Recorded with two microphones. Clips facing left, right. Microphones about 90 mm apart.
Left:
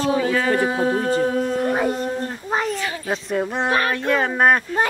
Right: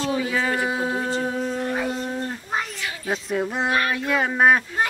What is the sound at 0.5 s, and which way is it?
Speech, 45° left (ahead or behind).